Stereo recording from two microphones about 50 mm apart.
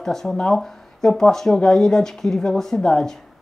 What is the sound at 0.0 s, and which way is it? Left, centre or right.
Speech, centre.